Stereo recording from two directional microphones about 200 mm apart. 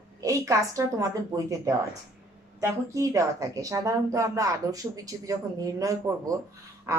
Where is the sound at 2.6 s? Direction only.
15° right (ahead or behind).